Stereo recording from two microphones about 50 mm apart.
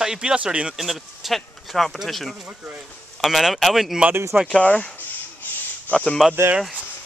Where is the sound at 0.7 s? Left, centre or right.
Centre.